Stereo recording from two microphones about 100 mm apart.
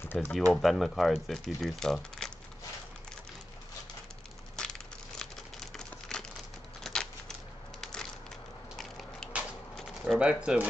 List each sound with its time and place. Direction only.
0.0 s speech: 20° left (ahead or behind)
0.5 s speech: centre (ahead or behind)
4.6 s a sound: 5° left (ahead or behind)
7.8 s crushing: 5° left (ahead or behind)
8.7 s a sound: 5° left (ahead or behind)
10.1 s speech: 10° right (ahead or behind)